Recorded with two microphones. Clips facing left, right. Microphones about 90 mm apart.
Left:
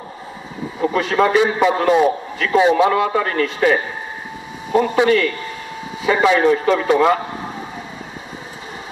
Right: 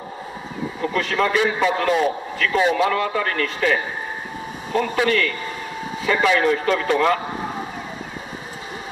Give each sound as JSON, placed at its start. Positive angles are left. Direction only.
{"t": 0.8, "sound": "a man's voice", "side_deg": 20}